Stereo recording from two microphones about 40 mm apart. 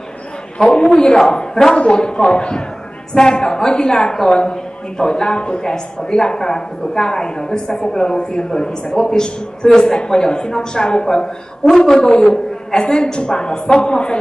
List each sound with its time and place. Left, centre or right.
0.9 s a man's voice: centre